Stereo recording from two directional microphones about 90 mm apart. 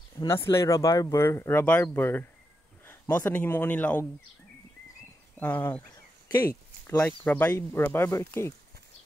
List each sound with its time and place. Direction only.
0.3 s speech: 30° left (ahead or behind)
1.2 s speech: 30° left (ahead or behind)
5.4 s speech: 20° left (ahead or behind)
6.9 s speech: 25° left (ahead or behind)